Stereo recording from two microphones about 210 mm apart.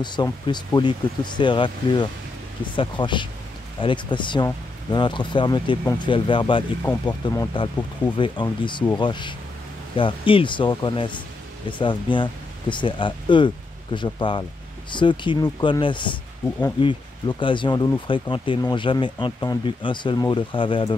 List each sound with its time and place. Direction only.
0.0 s speech: 20° left (ahead or behind)